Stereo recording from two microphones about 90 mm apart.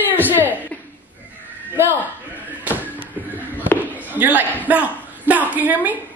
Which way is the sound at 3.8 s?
20° right (ahead or behind).